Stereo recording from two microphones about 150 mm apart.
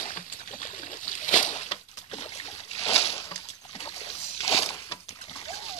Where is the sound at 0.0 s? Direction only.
55° left (ahead or behind).